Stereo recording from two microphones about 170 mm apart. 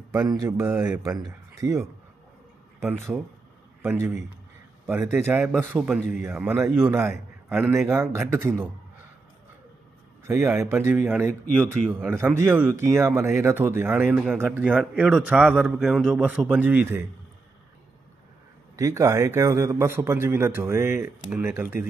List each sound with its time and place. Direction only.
1.2 s speech: 20° right (ahead or behind)
2.8 s a man's voice: 5° right (ahead or behind)
10.2 s a man's voice: 15° right (ahead or behind)
11.5 s speech: 5° left (ahead or behind)
11.9 s a man's voice: 15° right (ahead or behind)
18.8 s a man's voice: 20° right (ahead or behind)